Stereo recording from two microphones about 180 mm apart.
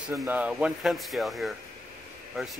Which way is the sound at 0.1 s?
15° right (ahead or behind).